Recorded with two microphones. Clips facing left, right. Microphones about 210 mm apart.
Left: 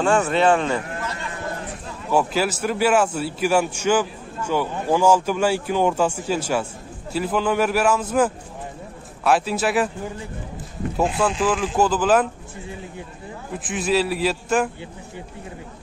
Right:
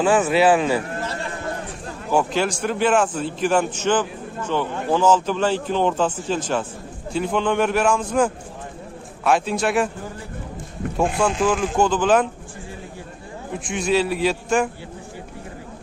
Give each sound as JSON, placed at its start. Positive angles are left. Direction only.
{"t": 0.0, "sound": "a man's voice", "side_deg": -5}
{"t": 1.0, "sound": "a sound", "side_deg": -30}
{"t": 2.0, "sound": "a man's voice", "side_deg": 5}
{"t": 11.1, "sound": "a man's voice", "side_deg": 5}
{"t": 13.5, "sound": "a man's voice", "side_deg": 5}